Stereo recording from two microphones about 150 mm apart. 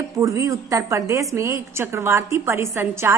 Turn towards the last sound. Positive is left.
turn(degrees=-20)  # may be behind; listen again after turning